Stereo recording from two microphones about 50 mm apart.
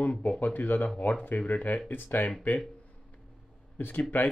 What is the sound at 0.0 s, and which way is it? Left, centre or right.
Speech, left.